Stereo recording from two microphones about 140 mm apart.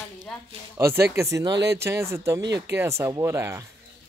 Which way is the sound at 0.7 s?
20° right (ahead or behind).